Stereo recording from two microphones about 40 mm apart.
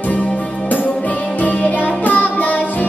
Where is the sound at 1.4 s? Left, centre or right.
Left.